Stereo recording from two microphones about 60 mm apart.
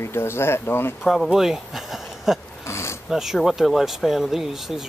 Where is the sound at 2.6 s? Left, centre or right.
Left.